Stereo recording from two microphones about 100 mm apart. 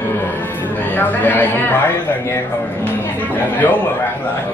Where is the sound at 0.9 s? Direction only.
15° left (ahead or behind).